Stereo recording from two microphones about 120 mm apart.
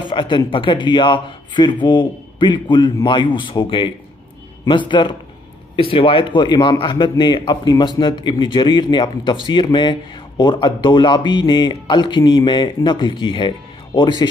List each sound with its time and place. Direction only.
0.1 s a man's voice: 40° left (ahead or behind)